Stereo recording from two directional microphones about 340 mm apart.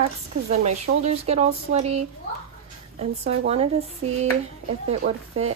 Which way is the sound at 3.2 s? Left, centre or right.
Centre.